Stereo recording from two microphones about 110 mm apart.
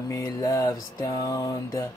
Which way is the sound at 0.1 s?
30° left (ahead or behind).